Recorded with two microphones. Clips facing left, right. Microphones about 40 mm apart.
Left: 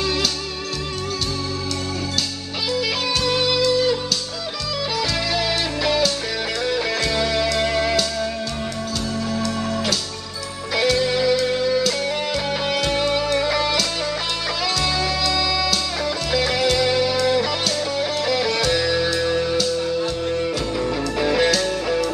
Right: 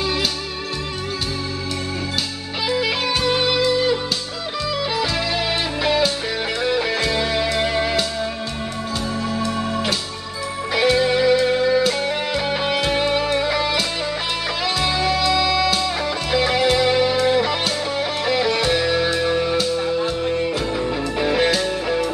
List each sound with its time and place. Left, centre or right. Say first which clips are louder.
0.0 s music: even; centre
2.7 s music: right 2 dB; centre
9.3 s music: even; right